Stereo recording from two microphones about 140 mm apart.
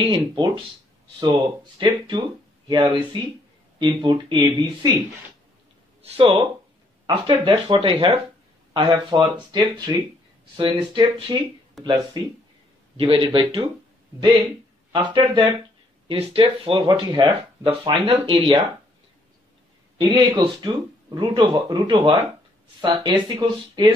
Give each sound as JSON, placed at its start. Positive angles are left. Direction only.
{"t": 0.0, "sound": "speech", "side_deg": -35}
{"t": 6.0, "sound": "speech", "side_deg": -45}
{"t": 14.9, "sound": "speech", "side_deg": -35}
{"t": 20.0, "sound": "speech", "side_deg": -30}
{"t": 21.9, "sound": "speech", "side_deg": -40}